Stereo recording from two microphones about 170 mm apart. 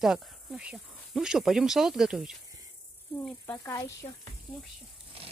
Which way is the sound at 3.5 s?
20° left (ahead or behind).